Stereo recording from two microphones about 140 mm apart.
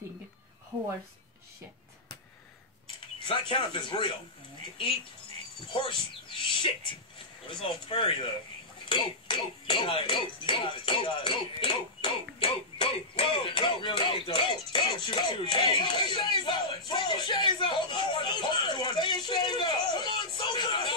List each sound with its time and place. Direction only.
3.0 s speech: 35° left (ahead or behind)
5.9 s speech: 35° left (ahead or behind)
20.3 s a sound: 35° left (ahead or behind)